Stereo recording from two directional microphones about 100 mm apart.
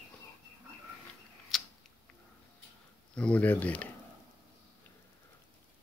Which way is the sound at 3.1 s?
15° left (ahead or behind).